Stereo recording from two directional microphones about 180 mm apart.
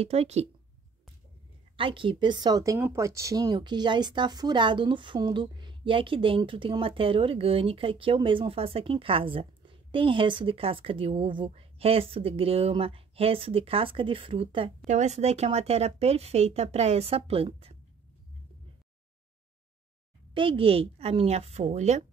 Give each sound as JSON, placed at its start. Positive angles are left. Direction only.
{"t": 0.0, "sound": "speech", "side_deg": -35}
{"t": 1.8, "sound": "speech", "side_deg": -30}
{"t": 20.3, "sound": "speech", "side_deg": -30}